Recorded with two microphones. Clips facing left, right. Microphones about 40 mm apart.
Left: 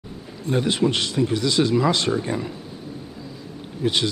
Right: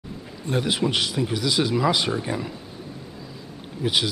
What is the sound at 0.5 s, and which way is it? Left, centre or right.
Speech, centre.